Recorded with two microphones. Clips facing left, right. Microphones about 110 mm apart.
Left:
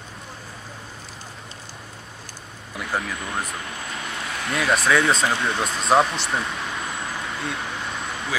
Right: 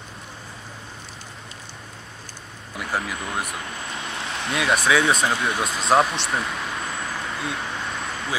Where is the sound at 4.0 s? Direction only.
30° right (ahead or behind).